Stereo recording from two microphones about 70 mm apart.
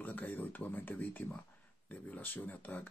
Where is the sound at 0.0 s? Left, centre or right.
Left.